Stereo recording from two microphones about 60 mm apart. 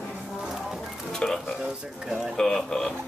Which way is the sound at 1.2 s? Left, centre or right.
Centre.